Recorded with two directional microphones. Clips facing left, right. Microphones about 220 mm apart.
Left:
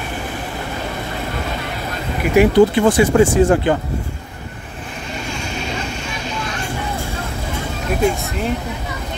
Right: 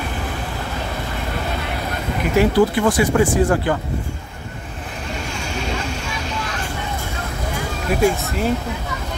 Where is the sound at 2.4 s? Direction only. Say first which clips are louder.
Left 4 dB; 20° left (ahead or behind).